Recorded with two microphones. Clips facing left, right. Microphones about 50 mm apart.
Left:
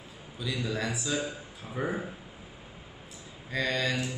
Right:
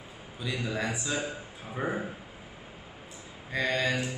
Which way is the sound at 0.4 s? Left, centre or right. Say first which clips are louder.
Even; right.